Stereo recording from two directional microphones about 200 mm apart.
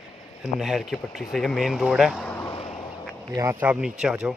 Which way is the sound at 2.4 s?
25° left (ahead or behind).